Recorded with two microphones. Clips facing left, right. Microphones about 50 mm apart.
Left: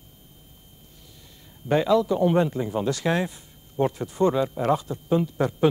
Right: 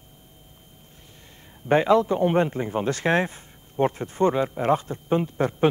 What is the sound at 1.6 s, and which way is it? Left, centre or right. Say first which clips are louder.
A man's voice: right 2 dB; right.